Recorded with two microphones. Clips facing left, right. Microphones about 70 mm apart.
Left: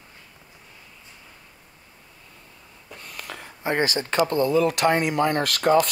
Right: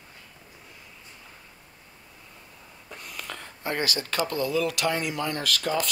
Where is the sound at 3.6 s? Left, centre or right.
Left.